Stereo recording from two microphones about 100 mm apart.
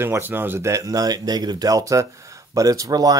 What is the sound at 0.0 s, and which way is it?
Speech, 20° right (ahead or behind).